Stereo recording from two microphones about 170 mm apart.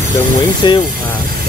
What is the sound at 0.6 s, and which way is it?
Speech, 25° left (ahead or behind).